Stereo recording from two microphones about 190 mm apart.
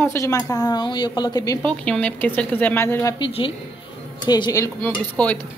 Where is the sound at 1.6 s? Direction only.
5° left (ahead or behind).